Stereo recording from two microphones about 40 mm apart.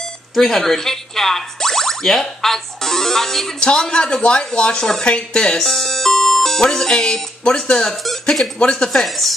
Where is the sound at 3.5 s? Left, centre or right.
Left.